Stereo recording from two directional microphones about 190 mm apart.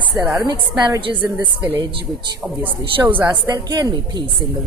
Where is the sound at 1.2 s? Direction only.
10° right (ahead or behind).